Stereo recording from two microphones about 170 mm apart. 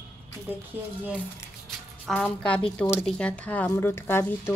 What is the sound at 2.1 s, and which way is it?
A woman's voice, 5° left (ahead or behind).